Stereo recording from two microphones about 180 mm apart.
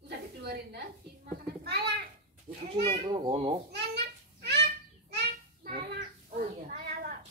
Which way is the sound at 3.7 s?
70° right (ahead or behind).